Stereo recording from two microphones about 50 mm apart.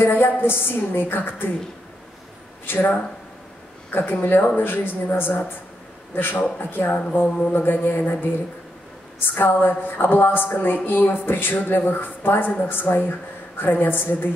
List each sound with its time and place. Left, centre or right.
0.0 s a woman's voice: left
2.6 s a woman's voice: left
4.2 s a woman's voice: left